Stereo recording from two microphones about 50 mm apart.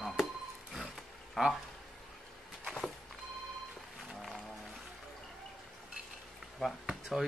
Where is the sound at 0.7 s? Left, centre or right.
Centre.